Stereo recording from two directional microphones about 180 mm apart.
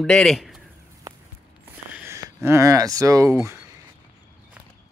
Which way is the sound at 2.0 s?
15° right (ahead or behind).